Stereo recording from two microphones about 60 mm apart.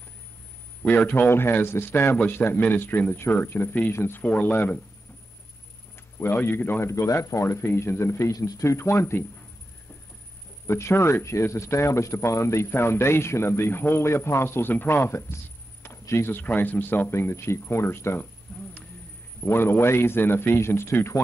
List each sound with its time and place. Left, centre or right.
0.8 s a man's voice: left
6.4 s a man's voice: left
6.9 s speech: left
10.7 s speech: left
16.3 s a man's voice: left
17.1 s speech: left
18.5 s a sound: centre
19.4 s a man's voice: left